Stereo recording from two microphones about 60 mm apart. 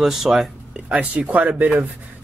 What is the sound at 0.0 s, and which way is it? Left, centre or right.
Speech, centre.